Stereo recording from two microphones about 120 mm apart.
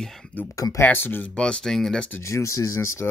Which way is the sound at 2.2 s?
25° left (ahead or behind).